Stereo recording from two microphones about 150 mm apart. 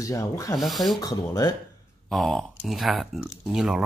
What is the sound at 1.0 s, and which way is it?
Speech, 25° left (ahead or behind).